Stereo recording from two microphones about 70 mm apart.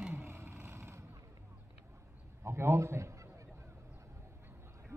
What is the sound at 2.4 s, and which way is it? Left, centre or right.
Speech, right.